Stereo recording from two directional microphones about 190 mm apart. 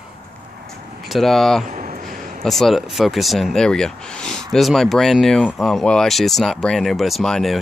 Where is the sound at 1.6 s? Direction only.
40° right (ahead or behind).